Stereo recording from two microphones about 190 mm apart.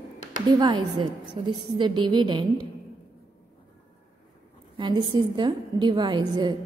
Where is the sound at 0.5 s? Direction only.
25° right (ahead or behind).